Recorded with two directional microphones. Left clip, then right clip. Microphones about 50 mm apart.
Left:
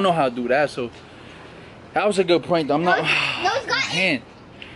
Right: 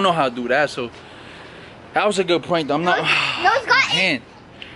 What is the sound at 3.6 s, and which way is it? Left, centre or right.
Speech, right.